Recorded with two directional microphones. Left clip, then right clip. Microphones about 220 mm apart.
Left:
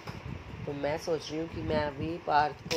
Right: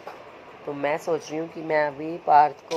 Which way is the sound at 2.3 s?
5° right (ahead or behind).